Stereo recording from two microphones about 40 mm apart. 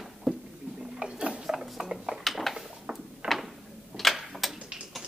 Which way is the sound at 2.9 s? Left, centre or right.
Right.